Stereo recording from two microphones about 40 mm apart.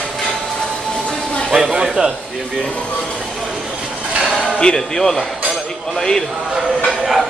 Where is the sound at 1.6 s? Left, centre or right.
Centre.